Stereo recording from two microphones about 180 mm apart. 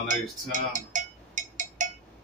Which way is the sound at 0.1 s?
45° right (ahead or behind).